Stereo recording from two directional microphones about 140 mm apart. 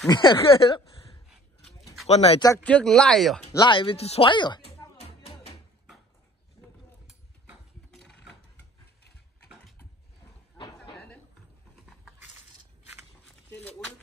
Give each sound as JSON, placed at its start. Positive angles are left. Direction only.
{"t": 0.1, "sound": "speech", "side_deg": 35}
{"t": 2.0, "sound": "speech", "side_deg": 50}
{"t": 2.6, "sound": "speech", "side_deg": 5}
{"t": 3.5, "sound": "speech", "side_deg": 35}
{"t": 5.0, "sound": "music", "side_deg": 45}
{"t": 6.6, "sound": "mechanisms", "side_deg": 30}
{"t": 7.9, "sound": "mechanisms", "side_deg": 5}